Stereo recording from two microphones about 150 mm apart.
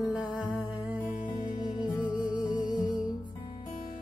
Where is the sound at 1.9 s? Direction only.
30° left (ahead or behind).